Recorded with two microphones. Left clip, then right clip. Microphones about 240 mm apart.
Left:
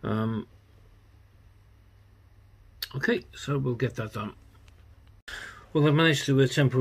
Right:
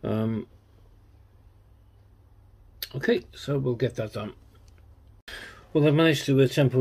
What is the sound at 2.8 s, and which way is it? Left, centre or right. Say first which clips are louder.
Speech: right 2 dB; centre.